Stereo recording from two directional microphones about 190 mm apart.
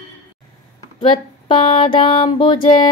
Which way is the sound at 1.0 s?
25° left (ahead or behind).